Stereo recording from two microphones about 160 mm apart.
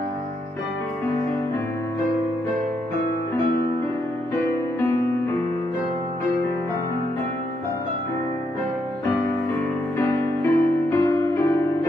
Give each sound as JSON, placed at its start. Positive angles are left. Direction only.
{"t": 4.5, "sound": "music", "side_deg": 15}
{"t": 9.9, "sound": "music", "side_deg": 15}